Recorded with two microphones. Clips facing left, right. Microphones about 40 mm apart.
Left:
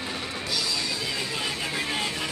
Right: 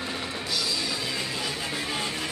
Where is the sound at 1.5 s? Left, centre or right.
Centre.